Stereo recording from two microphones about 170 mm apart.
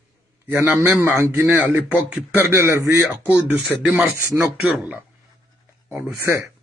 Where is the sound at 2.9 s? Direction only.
5° right (ahead or behind).